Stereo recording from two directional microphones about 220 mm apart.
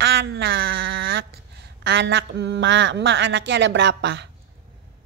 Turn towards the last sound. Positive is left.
turn(degrees=-50)  # may be behind; listen again after turning